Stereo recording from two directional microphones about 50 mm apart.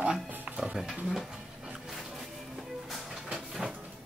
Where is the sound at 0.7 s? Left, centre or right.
Centre.